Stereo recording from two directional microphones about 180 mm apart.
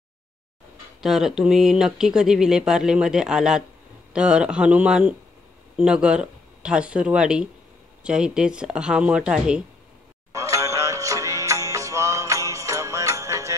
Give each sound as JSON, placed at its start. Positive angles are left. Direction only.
{"t": 1.0, "sound": "speech", "side_deg": 0}
{"t": 10.3, "sound": "music", "side_deg": -15}